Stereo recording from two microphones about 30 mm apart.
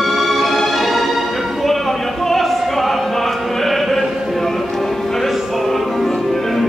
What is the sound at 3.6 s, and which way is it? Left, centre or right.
Chant, centre.